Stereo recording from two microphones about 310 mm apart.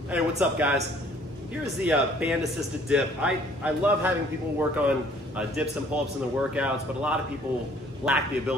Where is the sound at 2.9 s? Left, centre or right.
Centre.